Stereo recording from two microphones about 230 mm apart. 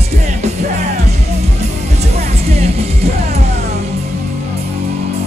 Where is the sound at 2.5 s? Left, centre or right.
Right.